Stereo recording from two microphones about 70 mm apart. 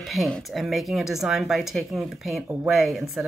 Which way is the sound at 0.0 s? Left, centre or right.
Centre.